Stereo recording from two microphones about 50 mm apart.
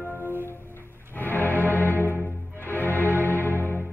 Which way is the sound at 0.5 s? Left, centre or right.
Left.